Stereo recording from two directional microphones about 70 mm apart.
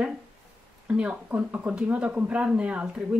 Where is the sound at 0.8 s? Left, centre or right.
Centre.